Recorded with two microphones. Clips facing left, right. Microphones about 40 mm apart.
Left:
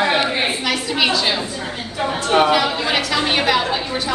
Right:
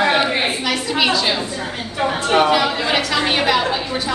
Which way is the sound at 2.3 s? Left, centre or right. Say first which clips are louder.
Even; centre.